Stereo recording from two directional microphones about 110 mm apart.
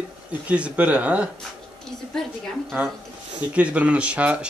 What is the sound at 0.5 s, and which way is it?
Speech, 10° right (ahead or behind).